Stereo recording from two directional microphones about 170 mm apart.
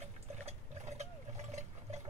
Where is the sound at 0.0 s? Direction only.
40° right (ahead or behind).